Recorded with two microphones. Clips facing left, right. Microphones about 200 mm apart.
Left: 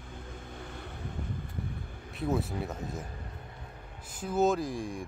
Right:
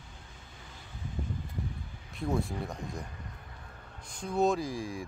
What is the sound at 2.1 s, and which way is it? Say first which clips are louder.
Speech: left 1 dB; centre (ahead or behind).